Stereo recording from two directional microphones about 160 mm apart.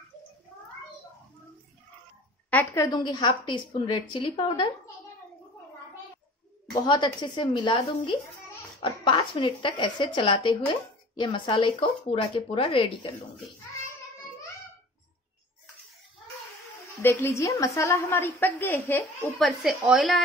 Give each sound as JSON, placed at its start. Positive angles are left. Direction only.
{"t": 2.5, "sound": "a woman's voice", "side_deg": 20}
{"t": 6.7, "sound": "a woman's voice", "side_deg": 30}
{"t": 17.0, "sound": "a woman's voice", "side_deg": 15}
{"t": 19.3, "sound": "speech", "side_deg": 0}